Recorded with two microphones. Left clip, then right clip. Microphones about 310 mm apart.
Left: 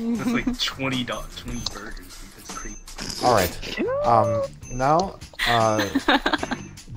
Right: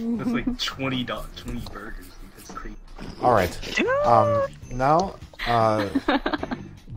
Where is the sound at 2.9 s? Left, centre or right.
Left.